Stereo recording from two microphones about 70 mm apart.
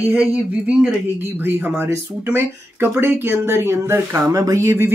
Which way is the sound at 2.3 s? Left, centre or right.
Right.